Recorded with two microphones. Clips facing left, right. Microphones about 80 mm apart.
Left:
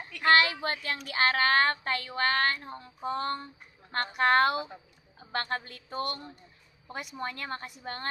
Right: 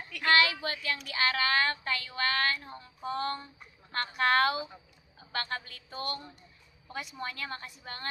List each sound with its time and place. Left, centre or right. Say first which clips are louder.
0.3 s speech: left 2 dB; left